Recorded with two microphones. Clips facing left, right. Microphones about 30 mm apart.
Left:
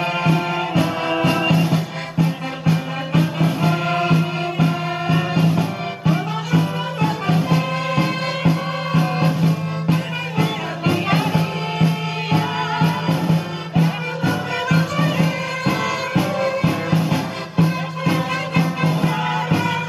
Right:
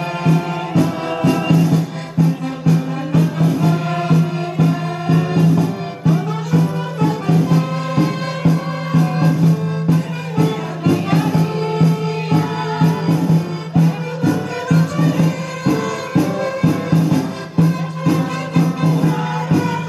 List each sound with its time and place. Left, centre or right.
0.3 s music: left
5.0 s music: centre
5.4 s music: left